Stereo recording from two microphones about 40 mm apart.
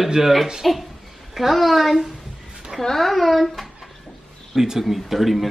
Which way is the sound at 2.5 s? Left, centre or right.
Centre.